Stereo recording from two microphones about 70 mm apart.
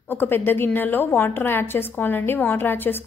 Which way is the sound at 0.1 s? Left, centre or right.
Left.